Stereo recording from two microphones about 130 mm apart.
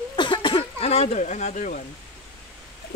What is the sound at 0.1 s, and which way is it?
Cough, 35° left (ahead or behind).